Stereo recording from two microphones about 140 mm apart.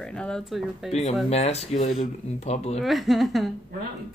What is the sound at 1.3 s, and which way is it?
Speech, 50° left (ahead or behind).